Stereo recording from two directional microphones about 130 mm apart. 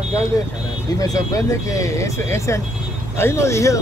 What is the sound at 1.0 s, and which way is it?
Speech, 25° left (ahead or behind).